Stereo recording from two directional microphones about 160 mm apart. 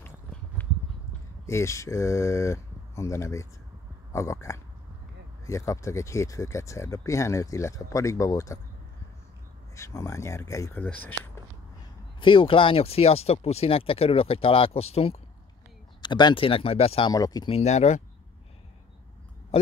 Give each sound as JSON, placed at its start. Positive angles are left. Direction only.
{"t": 0.0, "sound": "horse", "side_deg": 10}
{"t": 1.4, "sound": "speech", "side_deg": 15}
{"t": 9.8, "sound": "speech", "side_deg": 20}
{"t": 12.2, "sound": "speech", "side_deg": 30}
{"t": 16.0, "sound": "speech", "side_deg": 30}
{"t": 17.1, "sound": "speech", "side_deg": 25}
{"t": 17.5, "sound": "speech", "side_deg": 40}